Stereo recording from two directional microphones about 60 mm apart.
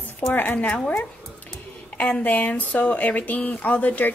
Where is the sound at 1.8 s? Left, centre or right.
Left.